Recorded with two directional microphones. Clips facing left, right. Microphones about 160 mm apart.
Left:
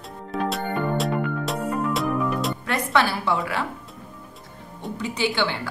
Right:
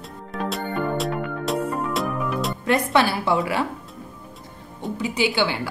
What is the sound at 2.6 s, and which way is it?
Speech, 20° right (ahead or behind).